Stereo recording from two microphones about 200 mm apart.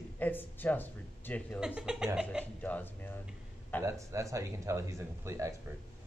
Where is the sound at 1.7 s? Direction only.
5° right (ahead or behind).